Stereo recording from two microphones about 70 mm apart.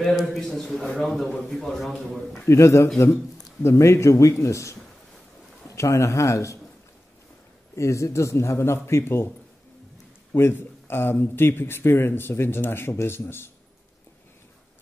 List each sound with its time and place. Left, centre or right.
0.0 s a man's voice: centre
2.4 s a man's voice: left
5.8 s a man's voice: left
7.7 s a man's voice: left
10.3 s speech: left